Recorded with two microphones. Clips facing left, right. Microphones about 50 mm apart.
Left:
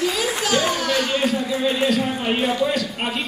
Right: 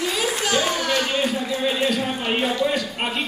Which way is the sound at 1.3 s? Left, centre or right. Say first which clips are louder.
Left 2 dB; centre.